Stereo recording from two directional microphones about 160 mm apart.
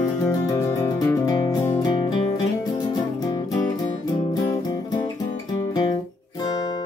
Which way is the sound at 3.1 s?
25° left (ahead or behind).